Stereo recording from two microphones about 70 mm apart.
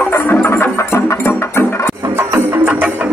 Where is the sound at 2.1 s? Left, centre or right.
Right.